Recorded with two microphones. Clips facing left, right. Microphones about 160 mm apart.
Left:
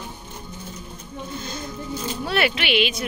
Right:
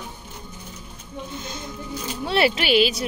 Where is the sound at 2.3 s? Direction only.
30° right (ahead or behind).